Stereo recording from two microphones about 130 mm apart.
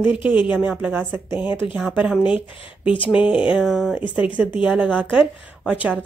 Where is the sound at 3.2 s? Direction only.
10° right (ahead or behind).